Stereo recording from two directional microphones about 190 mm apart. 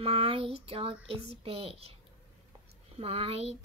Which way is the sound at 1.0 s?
30° right (ahead or behind).